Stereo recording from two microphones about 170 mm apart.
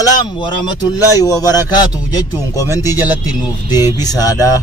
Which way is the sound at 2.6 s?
15° right (ahead or behind).